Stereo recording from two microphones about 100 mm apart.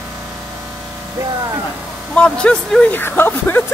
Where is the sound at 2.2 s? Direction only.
10° left (ahead or behind).